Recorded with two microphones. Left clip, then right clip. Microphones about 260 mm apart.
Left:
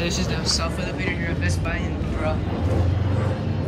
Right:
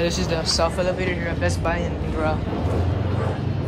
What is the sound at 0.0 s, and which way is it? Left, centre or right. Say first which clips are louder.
Speech: right 3 dB; centre.